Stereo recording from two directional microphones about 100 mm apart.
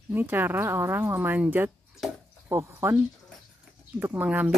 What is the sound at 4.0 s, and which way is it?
Speech, 20° right (ahead or behind).